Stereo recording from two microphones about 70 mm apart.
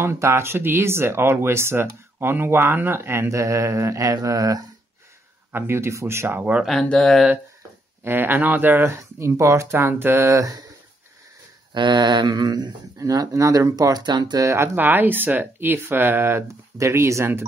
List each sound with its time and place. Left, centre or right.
0.0 s speech: right
3.3 s speech: right
5.5 s speech: right
6.8 s speech: centre
8.0 s speech: right
8.9 s speech: right
11.7 s speech: right
14.4 s speech: right
14.8 s speech: right